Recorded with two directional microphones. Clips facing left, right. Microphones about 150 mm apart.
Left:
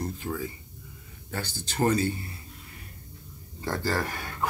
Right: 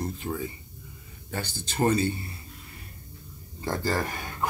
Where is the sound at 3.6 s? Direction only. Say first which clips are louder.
Right 1 dB; 15° right (ahead or behind).